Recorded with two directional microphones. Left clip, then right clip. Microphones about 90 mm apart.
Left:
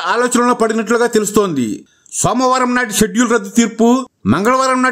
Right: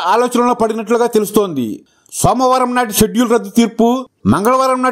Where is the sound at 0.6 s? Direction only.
30° right (ahead or behind).